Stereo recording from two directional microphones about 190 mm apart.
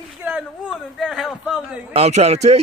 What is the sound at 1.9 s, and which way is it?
Speech, 35° right (ahead or behind).